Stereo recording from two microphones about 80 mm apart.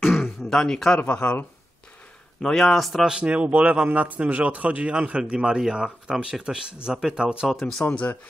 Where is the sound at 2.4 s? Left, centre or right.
Centre.